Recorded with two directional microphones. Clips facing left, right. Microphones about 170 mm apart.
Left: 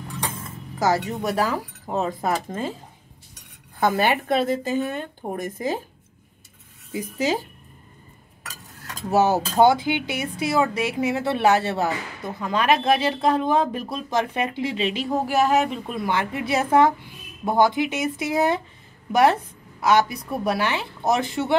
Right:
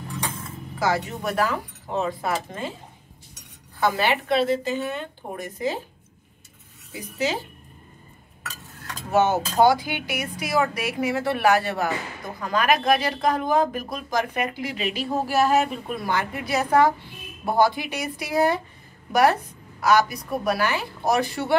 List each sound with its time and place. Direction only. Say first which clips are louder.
0.7 s speech: left 3 dB; 40° left (ahead or behind)
3.8 s speech: left 2 dB; 50° left (ahead or behind)
6.9 s speech: left 3 dB; 40° left (ahead or behind)
8.5 s cutlery: right 1 dB; 40° left (ahead or behind)
9.6 s speech: left 2 dB; 25° left (ahead or behind)
19.8 s speech: left 1 dB; 25° left (ahead or behind)